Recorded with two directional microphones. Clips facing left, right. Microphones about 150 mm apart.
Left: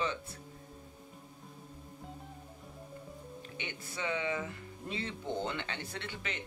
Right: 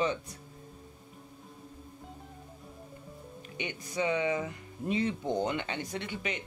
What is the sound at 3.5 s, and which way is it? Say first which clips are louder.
Speech: right 8 dB; 15° right (ahead or behind).